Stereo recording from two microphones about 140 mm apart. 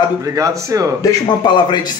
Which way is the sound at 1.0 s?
25° left (ahead or behind).